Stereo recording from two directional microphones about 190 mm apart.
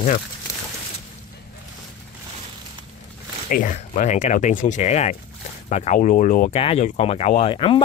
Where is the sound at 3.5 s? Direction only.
45° left (ahead or behind).